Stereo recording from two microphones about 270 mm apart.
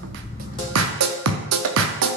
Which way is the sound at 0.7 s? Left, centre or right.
Right.